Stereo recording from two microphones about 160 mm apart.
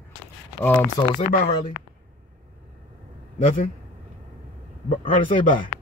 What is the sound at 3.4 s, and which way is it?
Speech, 40° left (ahead or behind).